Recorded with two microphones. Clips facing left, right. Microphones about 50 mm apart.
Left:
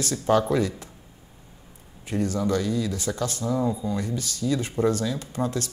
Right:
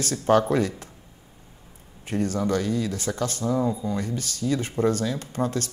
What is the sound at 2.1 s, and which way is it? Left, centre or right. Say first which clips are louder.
Speech: even; right.